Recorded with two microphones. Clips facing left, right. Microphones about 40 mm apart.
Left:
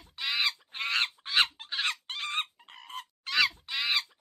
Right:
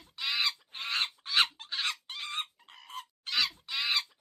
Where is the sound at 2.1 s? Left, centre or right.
Left.